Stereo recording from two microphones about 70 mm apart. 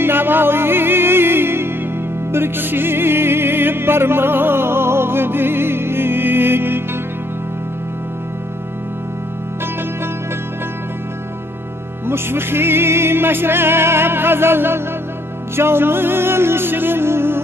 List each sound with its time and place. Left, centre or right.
0.0 s music: right
12.1 s music: right